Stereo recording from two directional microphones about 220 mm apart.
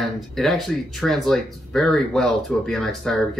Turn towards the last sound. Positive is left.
turn(degrees=5)  # may be behind; listen again after turning